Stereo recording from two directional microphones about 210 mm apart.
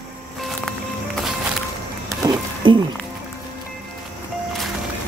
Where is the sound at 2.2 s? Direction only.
20° right (ahead or behind).